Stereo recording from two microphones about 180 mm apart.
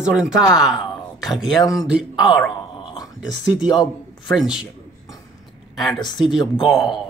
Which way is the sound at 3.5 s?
5° right (ahead or behind).